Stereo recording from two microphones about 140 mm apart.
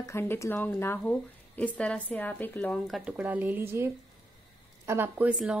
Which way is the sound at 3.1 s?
10° right (ahead or behind).